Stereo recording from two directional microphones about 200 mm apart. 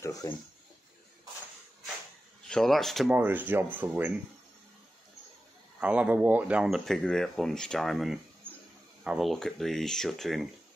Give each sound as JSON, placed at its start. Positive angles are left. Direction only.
{"t": 0.0, "sound": "speech", "side_deg": 15}
{"t": 2.4, "sound": "speech", "side_deg": 0}
{"t": 3.2, "sound": "speech", "side_deg": -10}
{"t": 5.8, "sound": "speech", "side_deg": -5}